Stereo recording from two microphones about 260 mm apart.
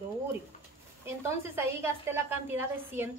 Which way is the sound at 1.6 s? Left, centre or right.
Centre.